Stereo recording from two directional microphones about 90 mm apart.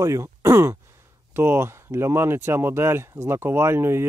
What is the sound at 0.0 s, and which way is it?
Speech, 35° right (ahead or behind).